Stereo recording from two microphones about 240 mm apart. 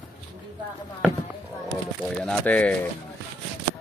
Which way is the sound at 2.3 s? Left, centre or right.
Centre.